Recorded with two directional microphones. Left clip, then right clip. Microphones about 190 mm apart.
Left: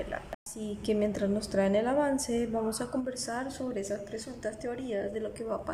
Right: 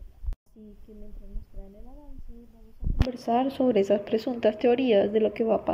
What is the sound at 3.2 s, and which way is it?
A woman's voice, 20° right (ahead or behind).